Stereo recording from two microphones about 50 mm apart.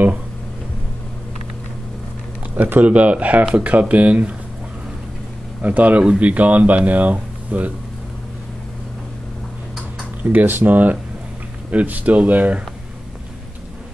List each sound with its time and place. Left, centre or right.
2.5 s speech: right
5.6 s speech: right
10.3 s speech: right